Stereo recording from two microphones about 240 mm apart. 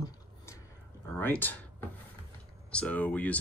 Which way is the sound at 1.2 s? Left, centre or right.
Centre.